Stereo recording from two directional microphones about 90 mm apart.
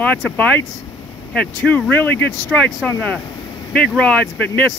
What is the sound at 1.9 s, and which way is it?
Speech, 20° left (ahead or behind).